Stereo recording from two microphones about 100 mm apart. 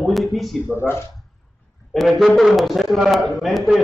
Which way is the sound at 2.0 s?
Centre (ahead or behind).